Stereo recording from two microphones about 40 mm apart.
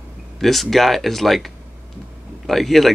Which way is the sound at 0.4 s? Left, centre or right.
Centre.